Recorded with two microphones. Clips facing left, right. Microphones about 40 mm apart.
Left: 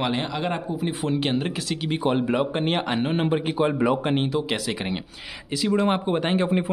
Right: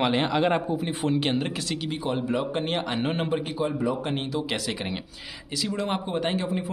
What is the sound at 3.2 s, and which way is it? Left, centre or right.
Speech, left.